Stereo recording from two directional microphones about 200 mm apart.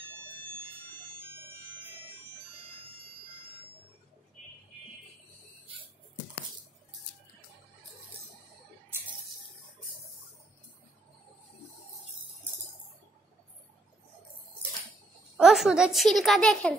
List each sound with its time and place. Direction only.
2.8 s wind chime: 30° right (ahead or behind)
15.3 s a woman's voice: centre (ahead or behind)